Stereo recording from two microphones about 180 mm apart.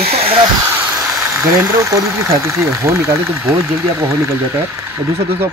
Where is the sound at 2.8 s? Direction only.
15° right (ahead or behind).